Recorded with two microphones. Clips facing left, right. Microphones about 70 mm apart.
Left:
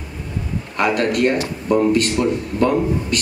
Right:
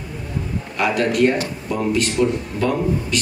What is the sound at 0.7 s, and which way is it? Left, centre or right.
A man's voice, left.